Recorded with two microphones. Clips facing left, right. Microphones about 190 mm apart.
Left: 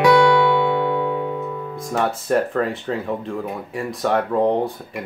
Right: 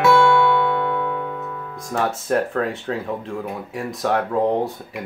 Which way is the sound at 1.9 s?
Centre (ahead or behind).